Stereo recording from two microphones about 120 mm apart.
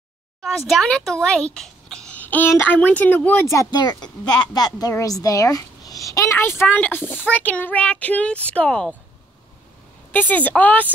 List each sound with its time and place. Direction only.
0.4 s speech: centre (ahead or behind)
3.4 s a woman's voice: 30° left (ahead or behind); by 8.9 s 10° left (ahead or behind)
10.1 s a woman's voice: 15° left (ahead or behind)